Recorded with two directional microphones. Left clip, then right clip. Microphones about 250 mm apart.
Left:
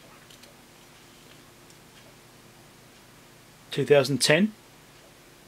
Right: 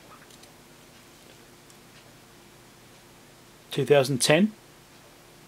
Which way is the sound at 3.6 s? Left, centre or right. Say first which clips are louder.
Even; centre.